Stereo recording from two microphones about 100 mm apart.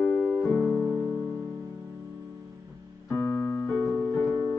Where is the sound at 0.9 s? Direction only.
15° right (ahead or behind).